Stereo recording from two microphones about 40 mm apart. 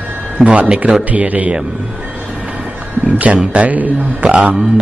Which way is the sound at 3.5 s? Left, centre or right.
Right.